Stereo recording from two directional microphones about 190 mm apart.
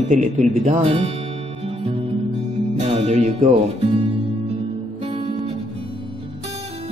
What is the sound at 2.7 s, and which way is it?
Music, 35° right (ahead or behind).